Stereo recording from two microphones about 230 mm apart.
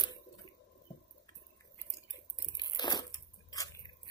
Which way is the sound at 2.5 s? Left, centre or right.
Centre.